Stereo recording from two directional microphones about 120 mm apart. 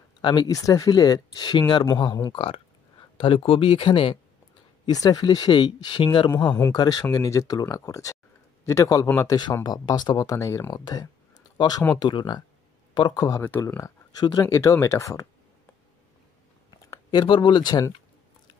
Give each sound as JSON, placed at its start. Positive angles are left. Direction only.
{"t": 0.2, "sound": "speech", "side_deg": 35}
{"t": 2.3, "sound": "speech", "side_deg": 50}
{"t": 4.8, "sound": "speech", "side_deg": 30}
{"t": 9.4, "sound": "speech", "side_deg": 35}
{"t": 10.8, "sound": "speech", "side_deg": 35}
{"t": 16.9, "sound": "speech", "side_deg": 35}